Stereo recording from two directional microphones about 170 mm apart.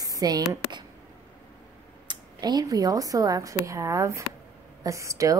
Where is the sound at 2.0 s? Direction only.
25° right (ahead or behind).